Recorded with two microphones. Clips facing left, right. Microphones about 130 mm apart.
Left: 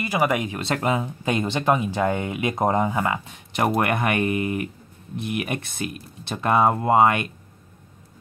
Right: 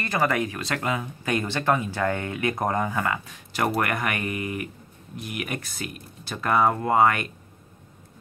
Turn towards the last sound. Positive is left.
turn(degrees=20)  # may be behind; listen again after turning